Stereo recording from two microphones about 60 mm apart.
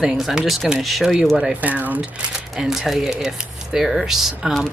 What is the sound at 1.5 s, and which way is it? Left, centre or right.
Speech, right.